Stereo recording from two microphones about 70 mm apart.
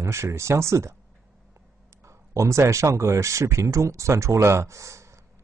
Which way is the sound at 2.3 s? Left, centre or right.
Right.